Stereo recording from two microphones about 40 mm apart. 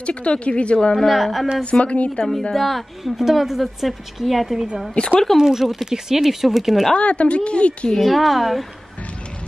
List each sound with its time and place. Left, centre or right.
0.0 s a woman's voice: left
0.9 s a woman's voice: centre
1.6 s a woman's voice: left
2.5 s a woman's voice: centre
7.0 s a woman's voice: left
8.0 s a woman's voice: centre